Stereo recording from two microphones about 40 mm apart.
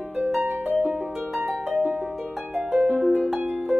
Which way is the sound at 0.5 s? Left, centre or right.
Right.